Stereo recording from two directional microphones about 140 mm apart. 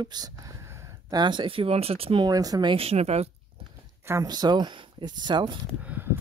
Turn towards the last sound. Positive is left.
turn(degrees=-15)  # may be behind; listen again after turning